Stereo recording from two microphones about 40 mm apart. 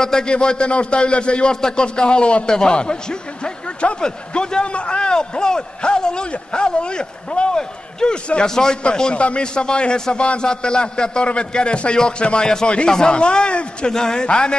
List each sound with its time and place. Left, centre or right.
0.0 s a man's voice: centre